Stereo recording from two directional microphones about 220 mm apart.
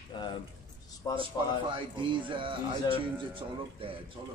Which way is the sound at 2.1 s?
25° right (ahead or behind).